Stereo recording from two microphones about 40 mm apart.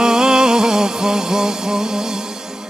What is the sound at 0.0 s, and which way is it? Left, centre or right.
Music, centre.